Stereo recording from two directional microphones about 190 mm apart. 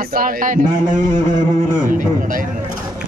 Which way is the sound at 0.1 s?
45° right (ahead or behind).